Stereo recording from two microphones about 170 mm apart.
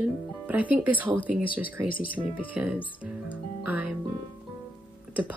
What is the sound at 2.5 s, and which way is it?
Speech, 10° right (ahead or behind).